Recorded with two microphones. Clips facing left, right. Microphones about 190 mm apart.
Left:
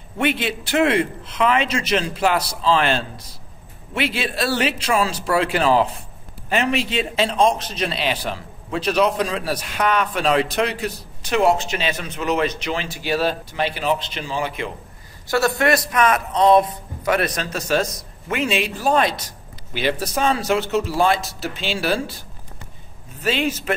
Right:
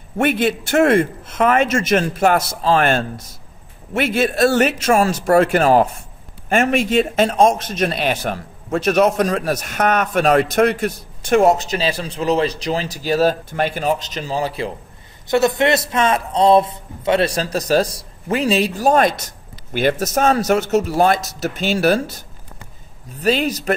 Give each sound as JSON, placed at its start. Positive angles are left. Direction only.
{"t": 0.2, "sound": "a man's voice", "side_deg": -50}
{"t": 15.2, "sound": "a man's voice", "side_deg": -20}
{"t": 23.2, "sound": "a man's voice", "side_deg": -40}